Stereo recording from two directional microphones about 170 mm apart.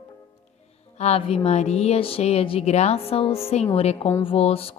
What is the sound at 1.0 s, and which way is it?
A woman's voice, 35° left (ahead or behind).